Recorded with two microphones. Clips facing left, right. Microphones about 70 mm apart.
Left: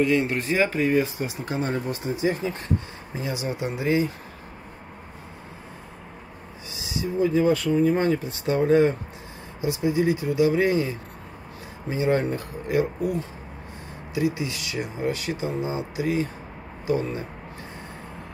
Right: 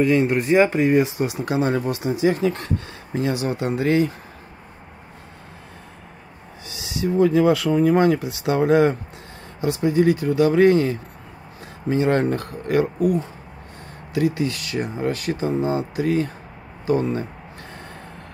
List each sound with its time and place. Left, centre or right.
0.7 s speech: right
0.9 s speech: right
3.2 s speech: right
6.7 s speech: right
9.6 s speech: right